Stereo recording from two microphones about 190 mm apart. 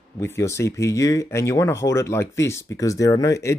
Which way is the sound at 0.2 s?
15° left (ahead or behind).